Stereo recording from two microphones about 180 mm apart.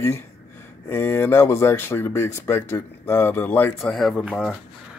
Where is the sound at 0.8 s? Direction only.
10° left (ahead or behind).